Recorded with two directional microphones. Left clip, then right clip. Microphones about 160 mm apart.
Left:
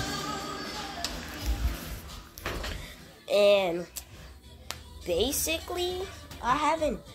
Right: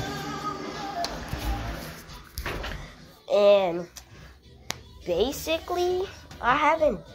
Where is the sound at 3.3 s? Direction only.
10° left (ahead or behind).